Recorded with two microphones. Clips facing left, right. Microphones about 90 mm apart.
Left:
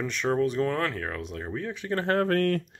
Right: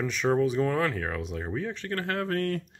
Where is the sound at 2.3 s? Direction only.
65° left (ahead or behind).